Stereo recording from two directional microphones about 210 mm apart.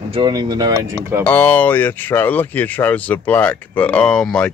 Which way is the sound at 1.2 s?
10° left (ahead or behind).